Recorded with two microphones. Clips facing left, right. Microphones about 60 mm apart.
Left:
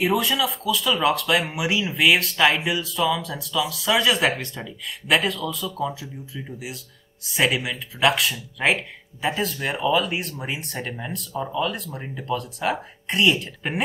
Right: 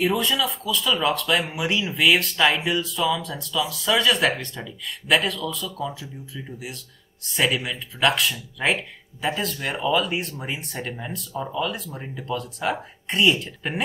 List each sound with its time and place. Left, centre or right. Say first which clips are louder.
0.0 s speech: left 1 dB; centre